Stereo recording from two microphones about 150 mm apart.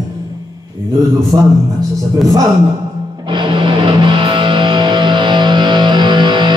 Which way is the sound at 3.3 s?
35° right (ahead or behind).